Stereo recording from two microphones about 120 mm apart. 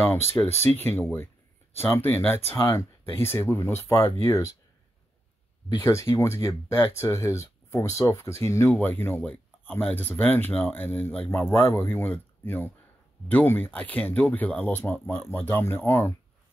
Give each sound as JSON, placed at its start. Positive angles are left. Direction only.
{"t": 0.0, "sound": "speech", "side_deg": 20}
{"t": 5.9, "sound": "speech", "side_deg": 25}